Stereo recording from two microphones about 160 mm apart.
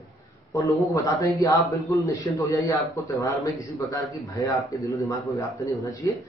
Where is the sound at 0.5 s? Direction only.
20° left (ahead or behind).